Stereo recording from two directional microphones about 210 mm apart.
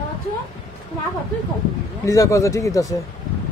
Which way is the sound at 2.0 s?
15° left (ahead or behind).